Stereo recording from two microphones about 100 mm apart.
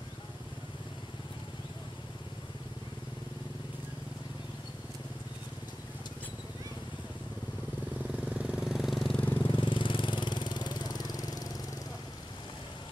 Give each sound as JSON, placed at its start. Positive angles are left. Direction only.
{"t": 8.3, "sound": "vehicle", "side_deg": -10}
{"t": 9.1, "sound": "vehicle", "side_deg": 15}
{"t": 9.5, "sound": "vehicle", "side_deg": 55}